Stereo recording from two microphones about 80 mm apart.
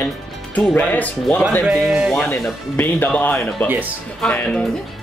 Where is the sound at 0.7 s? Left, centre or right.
Centre.